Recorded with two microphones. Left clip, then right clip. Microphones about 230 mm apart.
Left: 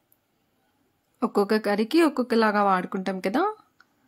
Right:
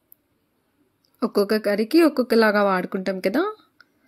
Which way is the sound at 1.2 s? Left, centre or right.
Centre.